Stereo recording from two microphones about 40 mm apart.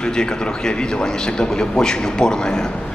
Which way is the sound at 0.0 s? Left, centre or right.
Centre.